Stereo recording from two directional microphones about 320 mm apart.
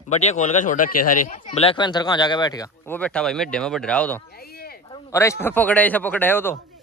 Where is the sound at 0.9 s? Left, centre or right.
Left.